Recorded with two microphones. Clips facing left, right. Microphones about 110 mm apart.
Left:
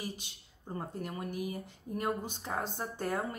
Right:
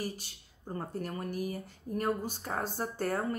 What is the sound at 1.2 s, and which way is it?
Speech, 40° right (ahead or behind).